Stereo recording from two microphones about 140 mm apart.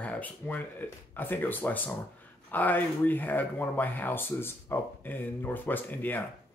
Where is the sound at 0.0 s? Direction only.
10° left (ahead or behind).